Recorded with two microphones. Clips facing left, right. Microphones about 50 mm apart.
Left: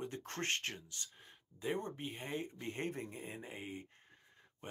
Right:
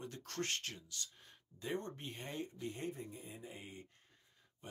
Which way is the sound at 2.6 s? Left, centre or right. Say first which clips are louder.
Left 2 dB; left.